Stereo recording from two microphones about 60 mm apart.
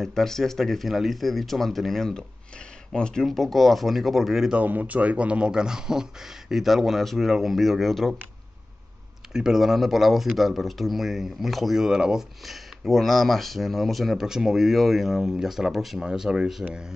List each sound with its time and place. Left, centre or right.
0.0 s speech: centre
4.6 s speech: right; by 8.2 s centre
9.3 s speech: centre